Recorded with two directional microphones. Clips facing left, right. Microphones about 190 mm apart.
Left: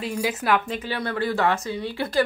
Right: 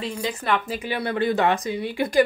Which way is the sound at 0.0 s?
5° left (ahead or behind).